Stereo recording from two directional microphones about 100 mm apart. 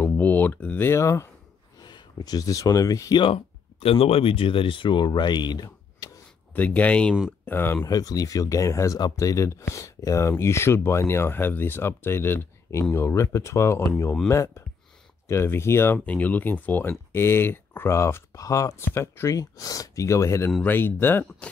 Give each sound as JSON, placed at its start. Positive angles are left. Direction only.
{"t": 0.0, "sound": "speech", "side_deg": 15}
{"t": 1.8, "sound": "speech", "side_deg": 45}
{"t": 3.2, "sound": "speech", "side_deg": 70}
{"t": 6.5, "sound": "speech", "side_deg": 15}
{"t": 7.8, "sound": "speech", "side_deg": 40}